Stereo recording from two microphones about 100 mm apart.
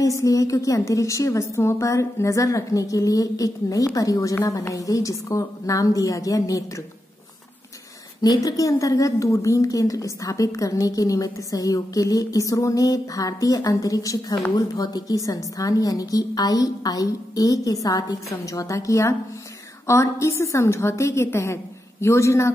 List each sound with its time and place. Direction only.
0.0 s a woman's voice: 35° left (ahead or behind)
8.2 s a woman's voice: 40° left (ahead or behind)